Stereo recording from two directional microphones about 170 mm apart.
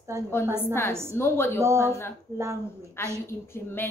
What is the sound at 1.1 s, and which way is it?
Speech, 15° left (ahead or behind).